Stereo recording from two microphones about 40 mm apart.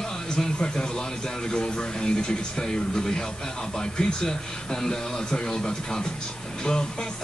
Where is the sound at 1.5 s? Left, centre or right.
Left.